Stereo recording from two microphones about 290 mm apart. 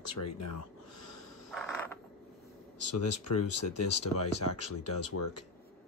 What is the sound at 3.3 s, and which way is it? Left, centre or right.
Speech, left.